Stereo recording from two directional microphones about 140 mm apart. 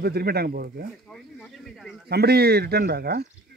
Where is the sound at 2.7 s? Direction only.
90° right.